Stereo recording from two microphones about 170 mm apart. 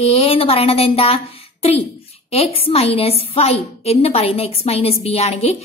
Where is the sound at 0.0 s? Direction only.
35° left (ahead or behind).